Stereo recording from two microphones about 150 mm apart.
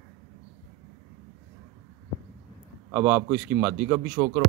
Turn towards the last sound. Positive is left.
turn(degrees=-10)  # may be behind; listen again after turning